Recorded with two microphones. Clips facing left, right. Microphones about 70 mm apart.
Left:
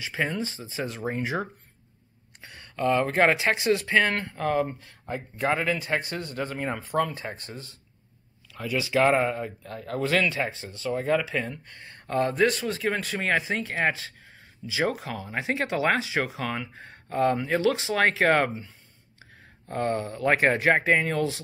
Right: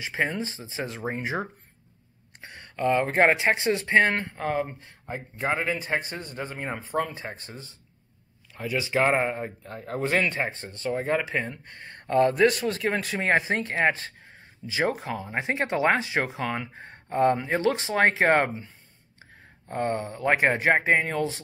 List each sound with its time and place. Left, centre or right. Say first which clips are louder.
0.0 s speech: right 1 dB; right
2.4 s speech: even; right
11.2 s speech: right 1 dB; right
11.8 s speech: right 5 dB; right
19.7 s speech: even; right